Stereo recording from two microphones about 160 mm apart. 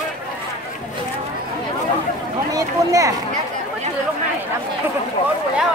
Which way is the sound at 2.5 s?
20° right (ahead or behind).